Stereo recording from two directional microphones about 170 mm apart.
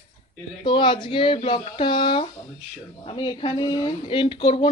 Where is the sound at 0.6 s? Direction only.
30° left (ahead or behind).